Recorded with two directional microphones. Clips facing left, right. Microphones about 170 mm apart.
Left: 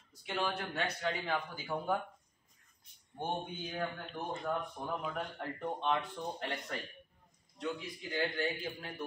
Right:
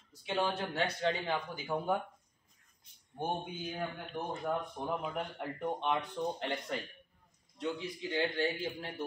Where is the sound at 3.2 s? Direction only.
10° right (ahead or behind).